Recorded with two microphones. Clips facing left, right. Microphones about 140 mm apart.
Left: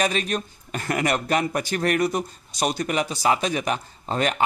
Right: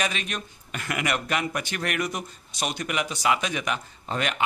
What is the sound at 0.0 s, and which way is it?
Speech, 40° left (ahead or behind).